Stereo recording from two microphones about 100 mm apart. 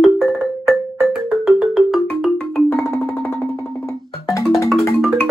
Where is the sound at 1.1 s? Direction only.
5° right (ahead or behind).